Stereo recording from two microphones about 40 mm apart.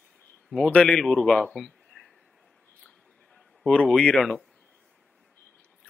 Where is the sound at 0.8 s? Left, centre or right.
Centre.